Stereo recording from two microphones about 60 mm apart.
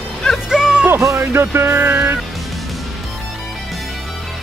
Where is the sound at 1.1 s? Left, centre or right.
Right.